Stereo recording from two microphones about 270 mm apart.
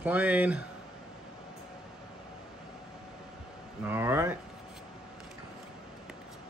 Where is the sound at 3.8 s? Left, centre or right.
Centre.